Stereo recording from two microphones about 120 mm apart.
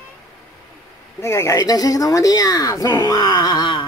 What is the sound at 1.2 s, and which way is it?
Speech, 25° left (ahead or behind).